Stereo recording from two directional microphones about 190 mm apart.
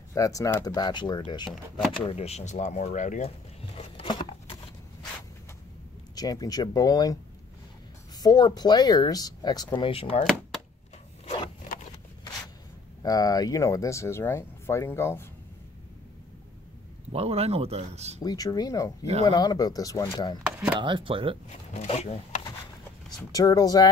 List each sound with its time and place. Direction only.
0.1 s speech: 15° left (ahead or behind)
6.1 s speech: 20° left (ahead or behind)
8.2 s speech: 20° left (ahead or behind)
13.0 s speech: 20° left (ahead or behind)
17.1 s speech: 30° right (ahead or behind)
18.2 s speech: 20° left (ahead or behind)
20.8 s speech: 25° right (ahead or behind)
21.5 s speech: 35° left (ahead or behind)
23.3 s speech: 20° left (ahead or behind)